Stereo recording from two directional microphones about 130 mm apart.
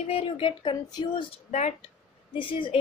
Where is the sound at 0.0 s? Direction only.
50° left (ahead or behind).